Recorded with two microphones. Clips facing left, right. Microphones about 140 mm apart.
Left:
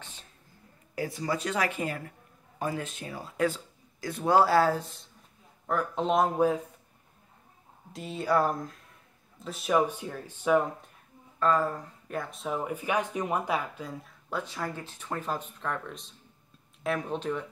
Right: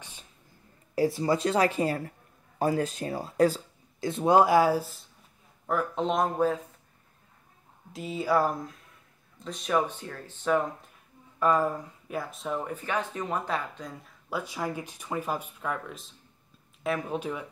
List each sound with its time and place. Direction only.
0.9 s speech: 30° right (ahead or behind); by 6.6 s 10° left (ahead or behind)
7.9 s speech: centre (ahead or behind)
11.3 s speech: 15° right (ahead or behind); by 14.1 s 5° left (ahead or behind)
14.3 s speech: 10° right (ahead or behind)